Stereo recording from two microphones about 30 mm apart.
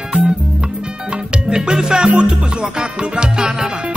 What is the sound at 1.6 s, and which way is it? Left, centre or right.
Salsa music, right.